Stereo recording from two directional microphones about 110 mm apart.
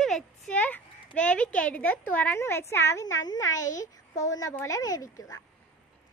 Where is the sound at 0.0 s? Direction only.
5° left (ahead or behind).